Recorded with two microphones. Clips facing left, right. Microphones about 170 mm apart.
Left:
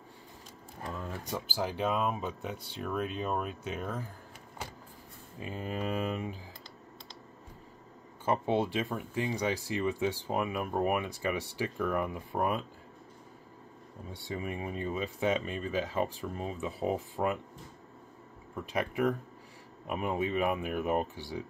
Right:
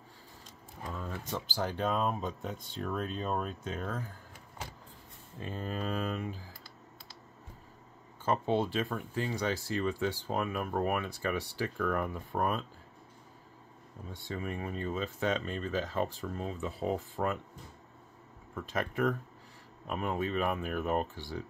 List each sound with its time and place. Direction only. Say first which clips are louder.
0.9 s speech: even; 10° left (ahead or behind)
5.4 s speech: left 1 dB; 15° left (ahead or behind)
8.3 s speech: left 1 dB; 15° left (ahead or behind)
14.2 s speech: left 1 dB; 15° left (ahead or behind)
18.5 s speech: left 1 dB; 15° left (ahead or behind)